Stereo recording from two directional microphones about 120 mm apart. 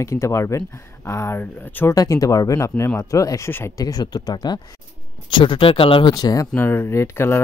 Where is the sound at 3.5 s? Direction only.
15° left (ahead or behind).